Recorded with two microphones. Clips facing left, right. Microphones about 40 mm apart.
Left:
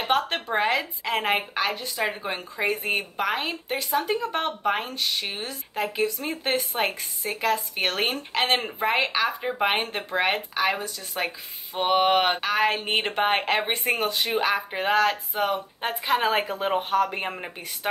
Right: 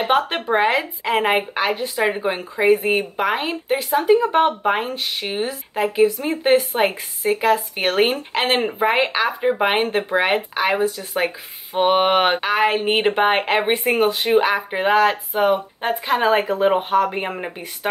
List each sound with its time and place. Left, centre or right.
0.3 s speech: centre
15.8 s speech: centre